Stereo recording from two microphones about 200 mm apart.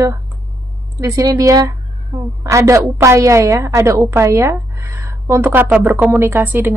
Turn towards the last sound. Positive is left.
turn(degrees=-10)  # may be behind; listen again after turning